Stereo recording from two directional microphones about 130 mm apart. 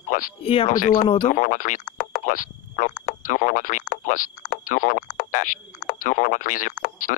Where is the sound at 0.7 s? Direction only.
90° left.